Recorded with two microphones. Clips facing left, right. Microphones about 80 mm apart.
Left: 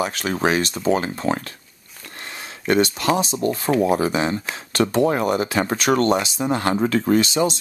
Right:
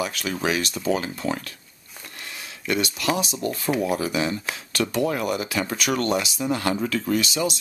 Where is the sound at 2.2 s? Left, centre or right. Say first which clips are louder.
Left 6 dB; left.